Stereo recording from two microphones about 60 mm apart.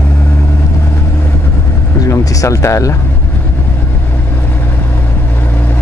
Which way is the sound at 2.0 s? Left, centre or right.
Left.